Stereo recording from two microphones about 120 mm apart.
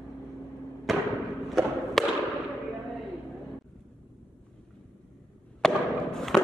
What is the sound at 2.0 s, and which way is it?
Fireworks, centre (ahead or behind).